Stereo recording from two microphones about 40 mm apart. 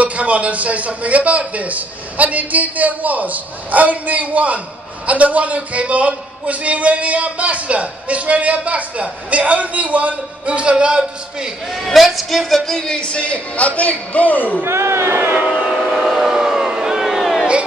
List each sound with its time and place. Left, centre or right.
0.0 s a man's voice: right
11.7 s a man's voice: centre
12.8 s a man's voice: left
14.6 s speech: right
15.6 s vehicle: right
16.0 s vehicle: centre